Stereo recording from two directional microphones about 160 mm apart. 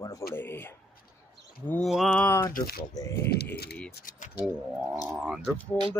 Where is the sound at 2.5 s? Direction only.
65° left (ahead or behind).